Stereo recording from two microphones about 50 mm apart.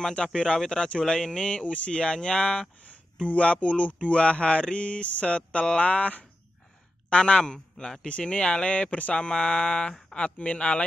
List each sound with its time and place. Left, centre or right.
0.0 s speech: centre
1.5 s speech: left